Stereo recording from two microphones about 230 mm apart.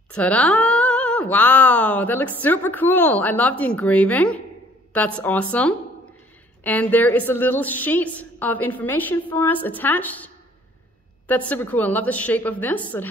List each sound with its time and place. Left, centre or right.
0.1 s speech: centre